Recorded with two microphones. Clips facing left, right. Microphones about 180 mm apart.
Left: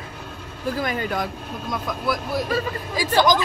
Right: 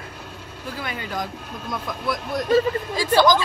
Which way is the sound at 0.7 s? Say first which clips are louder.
Left 5 dB; 45° left (ahead or behind).